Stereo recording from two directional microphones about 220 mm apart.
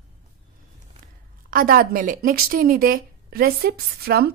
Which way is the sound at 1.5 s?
40° right (ahead or behind).